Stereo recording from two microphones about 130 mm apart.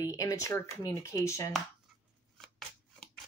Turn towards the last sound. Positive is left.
turn(degrees=5)  # may be behind; listen again after turning